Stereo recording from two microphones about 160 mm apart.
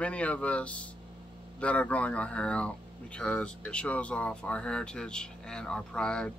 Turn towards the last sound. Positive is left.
turn(degrees=5)  # may be behind; listen again after turning